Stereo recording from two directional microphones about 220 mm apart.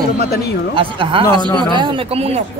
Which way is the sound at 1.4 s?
20° left (ahead or behind).